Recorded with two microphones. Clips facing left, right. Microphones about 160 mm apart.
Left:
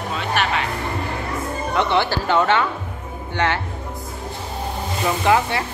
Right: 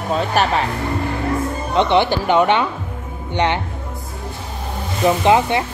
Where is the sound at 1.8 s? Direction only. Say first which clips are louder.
Right 5 dB; 20° right (ahead or behind).